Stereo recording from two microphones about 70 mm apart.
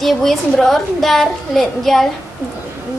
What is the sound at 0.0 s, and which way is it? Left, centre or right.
A child's voice, centre.